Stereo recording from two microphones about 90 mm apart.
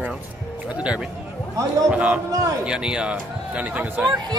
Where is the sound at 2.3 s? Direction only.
35° right (ahead or behind).